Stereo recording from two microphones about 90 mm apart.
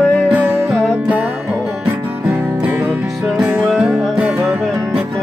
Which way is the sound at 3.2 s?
Centre (ahead or behind).